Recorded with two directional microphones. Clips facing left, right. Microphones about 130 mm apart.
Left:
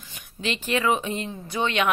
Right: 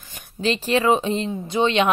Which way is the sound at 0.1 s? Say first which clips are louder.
Right 7 dB; 35° right (ahead or behind).